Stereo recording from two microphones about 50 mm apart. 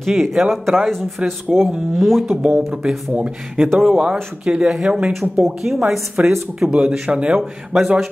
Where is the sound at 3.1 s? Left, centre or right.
Centre.